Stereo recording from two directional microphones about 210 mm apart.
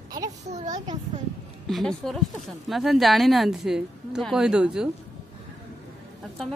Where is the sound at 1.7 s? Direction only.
Centre (ahead or behind).